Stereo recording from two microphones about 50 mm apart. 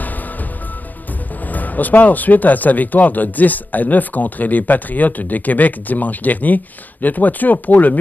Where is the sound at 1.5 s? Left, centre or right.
Left.